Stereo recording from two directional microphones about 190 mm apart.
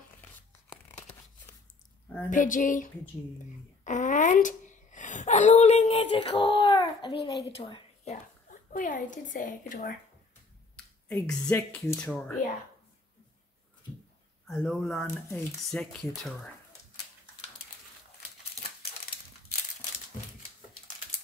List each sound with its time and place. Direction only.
2.2 s a woman's voice: 45° left (ahead or behind)
11.1 s speech: 5° left (ahead or behind)
14.5 s speech: 5° left (ahead or behind)